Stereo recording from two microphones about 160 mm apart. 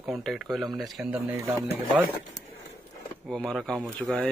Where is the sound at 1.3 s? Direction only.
15° right (ahead or behind).